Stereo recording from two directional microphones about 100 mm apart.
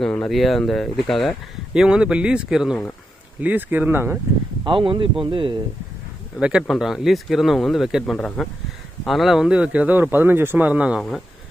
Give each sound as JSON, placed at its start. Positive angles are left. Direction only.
{"t": 0.3, "sound": "speech", "side_deg": 0}
{"t": 3.3, "sound": "speech", "side_deg": -15}
{"t": 4.6, "sound": "speech", "side_deg": -55}
{"t": 6.4, "sound": "speech", "side_deg": -5}
{"t": 8.2, "sound": "speech", "side_deg": 10}
{"t": 9.0, "sound": "speech", "side_deg": 0}
{"t": 11.0, "sound": "speech", "side_deg": 5}